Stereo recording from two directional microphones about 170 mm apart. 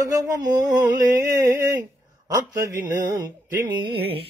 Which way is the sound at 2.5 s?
20° right (ahead or behind).